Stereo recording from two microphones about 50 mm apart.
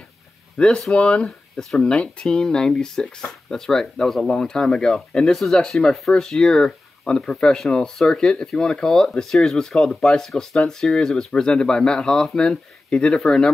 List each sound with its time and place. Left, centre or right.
0.6 s speech: centre
5.3 s speech: centre
5.6 s speech: centre